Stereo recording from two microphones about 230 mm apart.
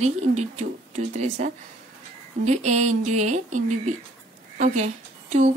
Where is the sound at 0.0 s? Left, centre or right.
Right.